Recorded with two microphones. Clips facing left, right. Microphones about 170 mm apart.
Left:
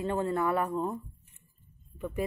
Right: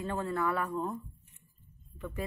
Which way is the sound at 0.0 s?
20° left (ahead or behind).